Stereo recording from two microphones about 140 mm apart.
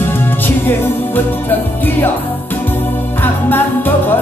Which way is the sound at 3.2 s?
15° left (ahead or behind).